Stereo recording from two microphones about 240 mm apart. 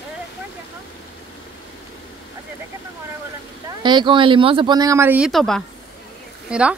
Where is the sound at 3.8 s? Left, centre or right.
Centre.